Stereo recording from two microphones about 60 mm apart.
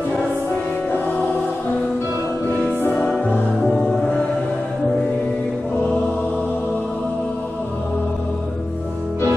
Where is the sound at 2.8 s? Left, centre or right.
Left.